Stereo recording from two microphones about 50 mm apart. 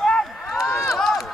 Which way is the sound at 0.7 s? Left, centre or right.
Left.